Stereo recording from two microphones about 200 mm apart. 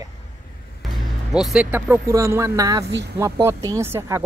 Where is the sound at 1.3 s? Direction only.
Centre (ahead or behind).